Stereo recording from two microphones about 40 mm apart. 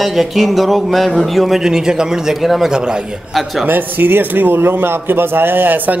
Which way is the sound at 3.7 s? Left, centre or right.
Right.